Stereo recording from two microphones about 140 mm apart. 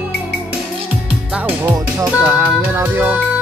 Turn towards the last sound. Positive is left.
turn(degrees=-10)  # may be behind; listen again after turning